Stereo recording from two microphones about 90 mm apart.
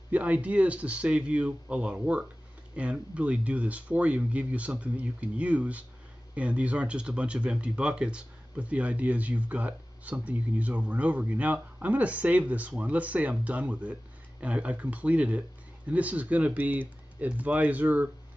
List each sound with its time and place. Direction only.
0.1 s speech: 15° right (ahead or behind)